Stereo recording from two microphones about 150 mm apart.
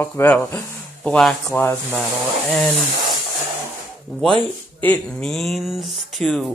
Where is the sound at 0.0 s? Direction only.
10° left (ahead or behind).